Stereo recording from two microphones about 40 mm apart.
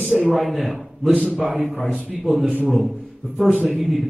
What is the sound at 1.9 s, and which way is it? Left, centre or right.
Speech, right.